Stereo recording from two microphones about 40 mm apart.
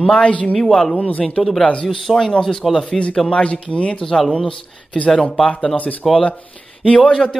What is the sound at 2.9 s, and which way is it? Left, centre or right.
Speech, centre.